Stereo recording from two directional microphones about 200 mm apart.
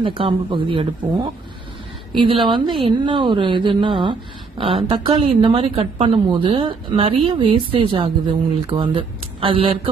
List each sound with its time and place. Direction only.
0.0 s a woman's voice: 25° right (ahead or behind)